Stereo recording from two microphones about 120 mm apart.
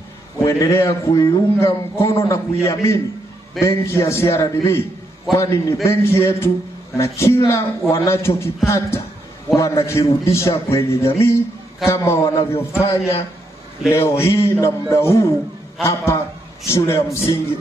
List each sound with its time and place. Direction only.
0.4 s a man's voice: 25° left (ahead or behind)